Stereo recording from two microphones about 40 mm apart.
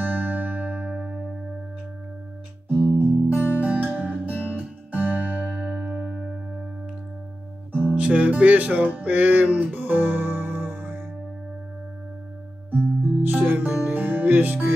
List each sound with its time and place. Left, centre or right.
0.0 s music: right
3.0 s music: right
7.9 s music: right
12.7 s music: right
13.7 s music: right
13.9 s music: right